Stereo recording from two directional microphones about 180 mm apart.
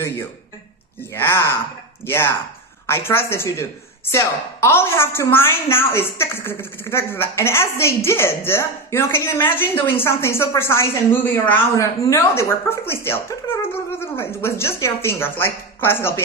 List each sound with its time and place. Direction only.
1.1 s speech: 15° left (ahead or behind)